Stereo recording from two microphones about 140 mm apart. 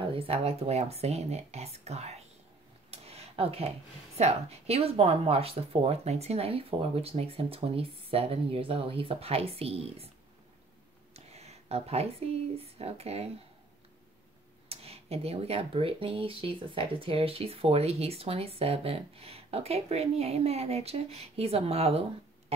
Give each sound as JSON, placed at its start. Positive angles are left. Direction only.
{"t": 0.0, "sound": "speech", "side_deg": -40}
{"t": 2.9, "sound": "a sound", "side_deg": -45}
{"t": 4.2, "sound": "speech", "side_deg": -50}
{"t": 11.1, "sound": "speech", "side_deg": -50}
{"t": 14.7, "sound": "speech", "side_deg": -45}